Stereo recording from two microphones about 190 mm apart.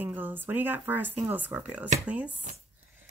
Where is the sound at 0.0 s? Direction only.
10° right (ahead or behind).